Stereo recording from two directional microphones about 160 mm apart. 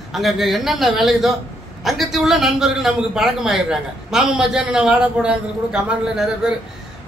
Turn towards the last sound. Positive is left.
turn(degrees=-5)  # may be behind; listen again after turning